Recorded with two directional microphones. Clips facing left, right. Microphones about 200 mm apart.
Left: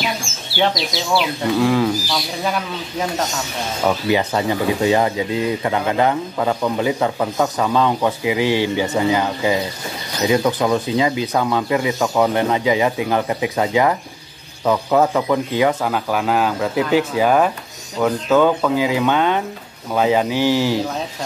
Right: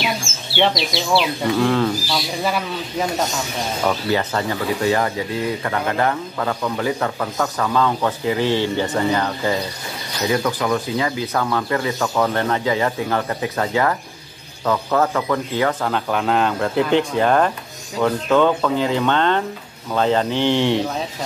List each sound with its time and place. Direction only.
0.6 s speech: centre (ahead or behind)
2.1 s speech: 5° right (ahead or behind)
3.8 s speech: 15° left (ahead or behind)